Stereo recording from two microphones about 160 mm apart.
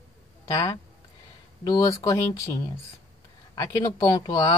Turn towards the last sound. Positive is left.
turn(degrees=25)  # may be behind; listen again after turning